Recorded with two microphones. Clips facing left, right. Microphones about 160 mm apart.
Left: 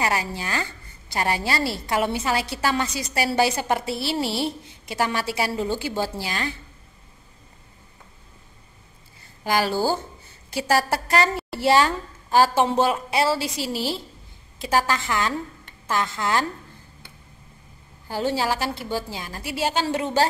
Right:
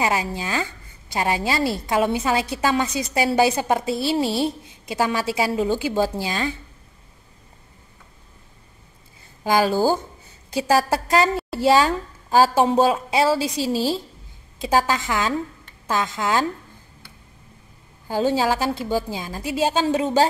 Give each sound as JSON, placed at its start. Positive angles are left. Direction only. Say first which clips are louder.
{"t": 0.0, "sound": "a woman's voice", "louder": "right 2 dB", "side_deg": -15}
{"t": 9.4, "sound": "a woman's voice", "louder": "right 4 dB", "side_deg": -15}
{"t": 18.0, "sound": "a woman's voice", "louder": "right 4 dB", "side_deg": -15}